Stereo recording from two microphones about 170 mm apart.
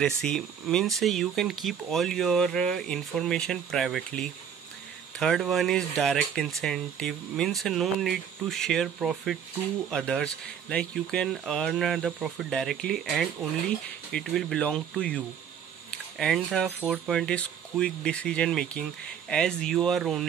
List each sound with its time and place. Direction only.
0.0 s speech: 5° left (ahead or behind)